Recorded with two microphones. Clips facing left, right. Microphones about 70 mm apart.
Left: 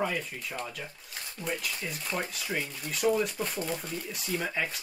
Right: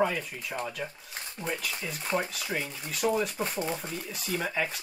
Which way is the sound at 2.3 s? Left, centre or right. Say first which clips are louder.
Even; centre.